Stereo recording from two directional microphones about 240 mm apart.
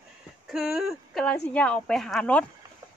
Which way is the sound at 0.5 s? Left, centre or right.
Centre.